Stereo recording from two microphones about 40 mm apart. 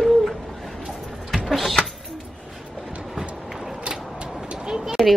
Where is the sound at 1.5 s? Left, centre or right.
Centre.